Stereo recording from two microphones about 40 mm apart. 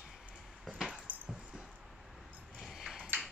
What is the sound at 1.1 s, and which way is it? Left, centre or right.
Dog, right.